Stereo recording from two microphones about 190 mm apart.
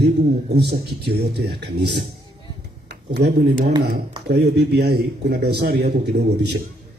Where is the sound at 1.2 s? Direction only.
60° right (ahead or behind).